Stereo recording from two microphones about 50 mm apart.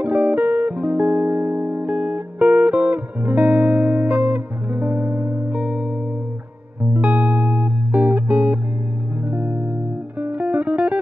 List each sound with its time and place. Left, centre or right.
0.0 s music: right
7.0 s music: right